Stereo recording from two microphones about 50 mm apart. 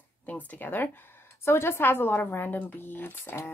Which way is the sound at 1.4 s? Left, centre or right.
Left.